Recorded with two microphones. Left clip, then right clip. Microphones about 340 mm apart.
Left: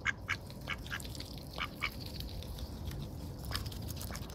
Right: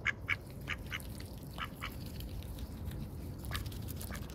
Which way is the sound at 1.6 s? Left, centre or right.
Centre.